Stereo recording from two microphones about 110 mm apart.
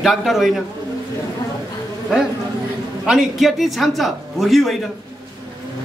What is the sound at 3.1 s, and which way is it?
A woman's voice, centre (ahead or behind).